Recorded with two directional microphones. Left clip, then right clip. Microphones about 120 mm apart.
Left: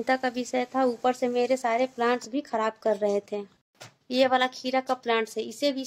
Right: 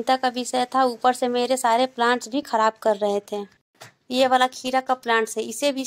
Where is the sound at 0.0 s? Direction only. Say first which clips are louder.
Right 5 dB; 5° right (ahead or behind).